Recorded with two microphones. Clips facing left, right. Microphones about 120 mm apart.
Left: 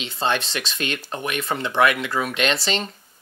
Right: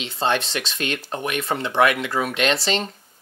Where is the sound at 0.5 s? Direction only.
50° right (ahead or behind).